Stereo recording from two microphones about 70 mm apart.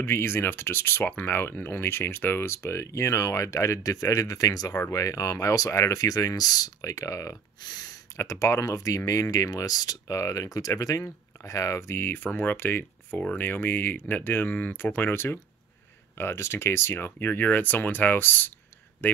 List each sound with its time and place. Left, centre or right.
0.0 s speech: left
8.2 s speech: left